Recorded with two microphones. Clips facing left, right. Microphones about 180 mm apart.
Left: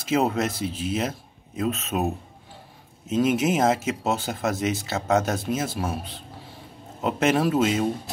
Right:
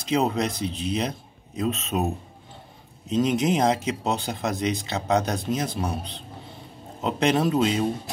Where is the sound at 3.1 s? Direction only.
5° left (ahead or behind).